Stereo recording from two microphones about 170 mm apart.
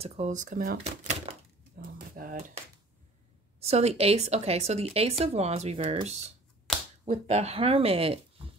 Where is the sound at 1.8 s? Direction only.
70° right (ahead or behind).